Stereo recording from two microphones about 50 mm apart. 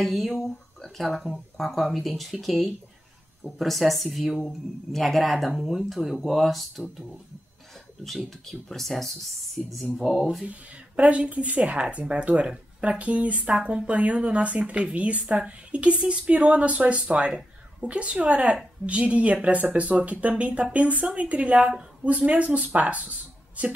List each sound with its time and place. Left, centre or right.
0.0 s speech: centre
8.0 s speech: centre
9.6 s music: centre
9.9 s speech: centre
10.4 s speech: right